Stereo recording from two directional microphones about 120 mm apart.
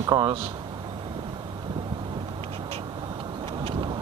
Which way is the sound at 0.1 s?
40° right (ahead or behind).